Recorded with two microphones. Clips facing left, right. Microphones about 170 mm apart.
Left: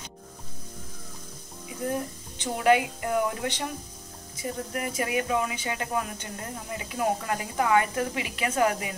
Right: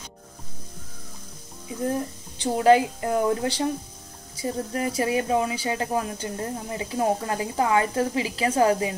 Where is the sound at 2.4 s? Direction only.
35° right (ahead or behind).